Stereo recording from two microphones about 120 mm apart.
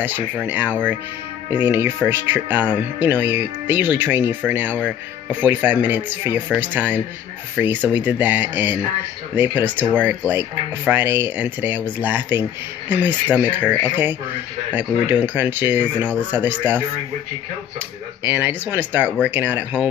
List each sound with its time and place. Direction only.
0.0 s speech: 15° right (ahead or behind)
13.6 s speech: 15° left (ahead or behind)
13.8 s speech: 15° right (ahead or behind)
18.2 s speech: 15° right (ahead or behind)